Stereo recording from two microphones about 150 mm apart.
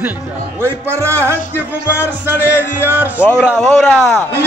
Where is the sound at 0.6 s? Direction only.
15° right (ahead or behind).